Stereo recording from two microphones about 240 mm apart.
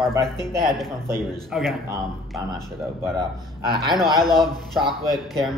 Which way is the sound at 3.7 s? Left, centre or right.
Centre.